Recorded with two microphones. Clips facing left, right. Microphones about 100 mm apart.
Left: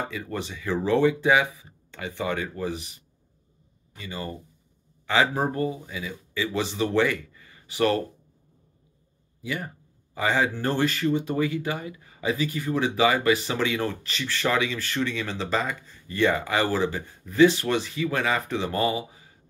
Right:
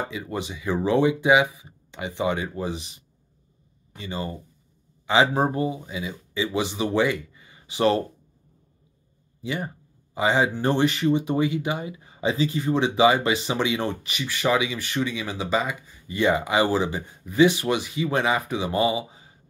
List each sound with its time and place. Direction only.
0.0 s speech: 15° right (ahead or behind)
9.4 s speech: 25° right (ahead or behind)